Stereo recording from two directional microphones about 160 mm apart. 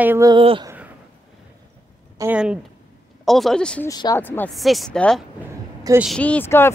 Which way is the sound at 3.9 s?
25° left (ahead or behind).